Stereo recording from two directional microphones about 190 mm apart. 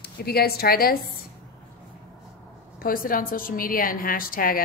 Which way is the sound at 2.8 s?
50° left (ahead or behind).